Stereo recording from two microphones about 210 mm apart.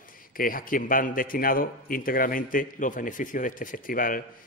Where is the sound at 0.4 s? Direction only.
40° left (ahead or behind).